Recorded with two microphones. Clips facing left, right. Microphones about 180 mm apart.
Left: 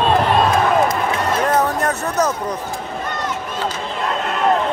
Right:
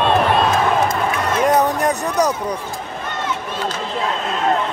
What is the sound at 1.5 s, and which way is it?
Speech, 15° right (ahead or behind).